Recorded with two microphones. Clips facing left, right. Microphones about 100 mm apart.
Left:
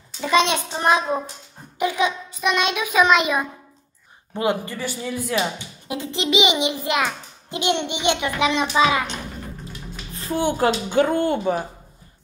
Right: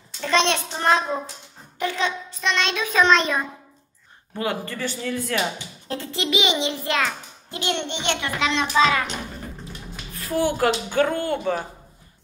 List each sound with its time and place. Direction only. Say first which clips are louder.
0.2 s speech: left 2 dB; 10° left (ahead or behind)
10.1 s speech: even; 25° left (ahead or behind)